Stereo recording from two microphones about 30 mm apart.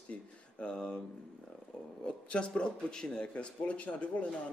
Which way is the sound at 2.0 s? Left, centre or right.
Left.